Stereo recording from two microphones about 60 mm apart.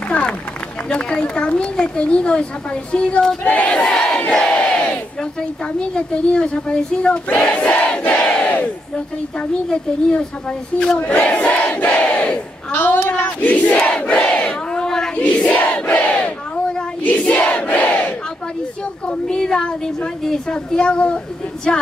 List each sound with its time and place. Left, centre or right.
0.1 s run: left
0.8 s a woman's voice: centre
3.4 s battle cry: left
4.3 s crowd: centre
5.9 s a woman's voice: centre
8.0 s crowd: left
9.7 s a woman's voice: centre
11.1 s crowd: centre
12.0 s battle cry: centre
12.7 s battle cry: left
14.7 s a sound: centre
15.1 s battle cry: centre
17.3 s battle cry: left
19.0 s a woman's voice: centre